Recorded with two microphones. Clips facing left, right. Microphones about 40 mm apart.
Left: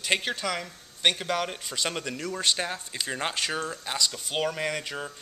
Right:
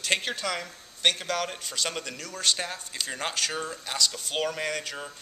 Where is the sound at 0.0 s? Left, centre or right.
Centre.